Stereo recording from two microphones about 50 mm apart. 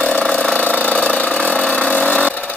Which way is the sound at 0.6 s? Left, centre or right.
Left.